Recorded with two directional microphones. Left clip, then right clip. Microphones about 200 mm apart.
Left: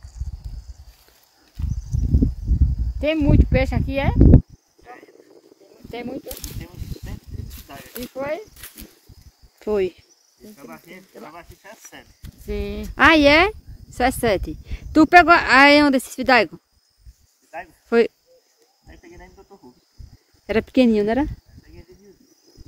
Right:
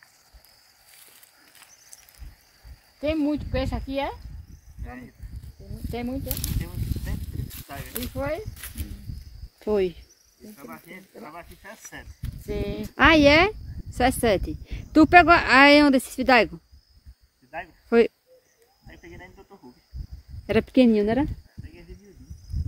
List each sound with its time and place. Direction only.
3.0 s speech: 40° left (ahead or behind)
5.9 s speech: 50° left (ahead or behind)
6.4 s speech: 15° right (ahead or behind)
8.2 s speech: 55° left (ahead or behind)
9.6 s speech: 5° left (ahead or behind)
10.5 s speech: 65° left (ahead or behind)
12.9 s speech: 5° left (ahead or behind)
17.5 s cricket: 5° left (ahead or behind)
20.4 s a woman's voice: centre (ahead or behind)